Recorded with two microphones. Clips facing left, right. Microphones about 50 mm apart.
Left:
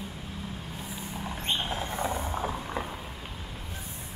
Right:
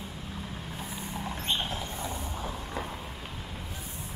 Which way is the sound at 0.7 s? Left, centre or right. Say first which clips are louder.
Right 3 dB; centre.